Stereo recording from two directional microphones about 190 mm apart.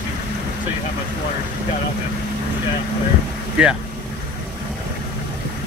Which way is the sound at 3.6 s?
5° right (ahead or behind).